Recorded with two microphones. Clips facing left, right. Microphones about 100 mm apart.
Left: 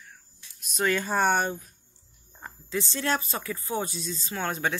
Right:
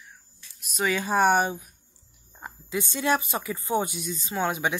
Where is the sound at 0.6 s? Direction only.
5° right (ahead or behind).